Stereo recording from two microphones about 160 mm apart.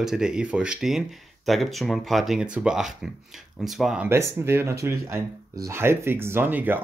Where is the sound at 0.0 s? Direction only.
5° right (ahead or behind).